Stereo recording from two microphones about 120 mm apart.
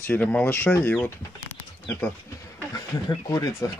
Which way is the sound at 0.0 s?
15° left (ahead or behind).